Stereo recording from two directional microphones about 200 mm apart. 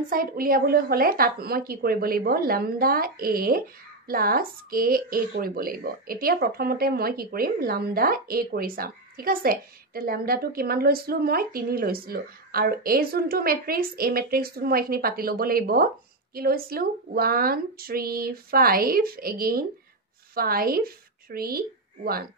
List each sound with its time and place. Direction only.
0.0 s a woman's voice: 45° right (ahead or behind)